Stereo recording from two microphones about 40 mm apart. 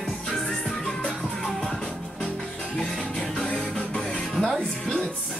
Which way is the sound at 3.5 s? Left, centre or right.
Centre.